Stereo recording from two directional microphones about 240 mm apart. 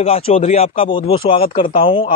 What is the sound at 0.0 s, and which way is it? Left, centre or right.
Speech, left.